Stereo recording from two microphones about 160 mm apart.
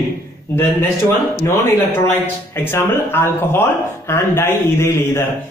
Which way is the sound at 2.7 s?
15° left (ahead or behind).